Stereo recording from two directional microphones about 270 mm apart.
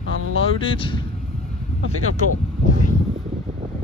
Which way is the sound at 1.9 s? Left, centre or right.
Left.